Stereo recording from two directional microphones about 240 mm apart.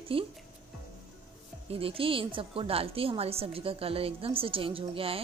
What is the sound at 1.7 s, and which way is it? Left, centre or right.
A woman's voice, right.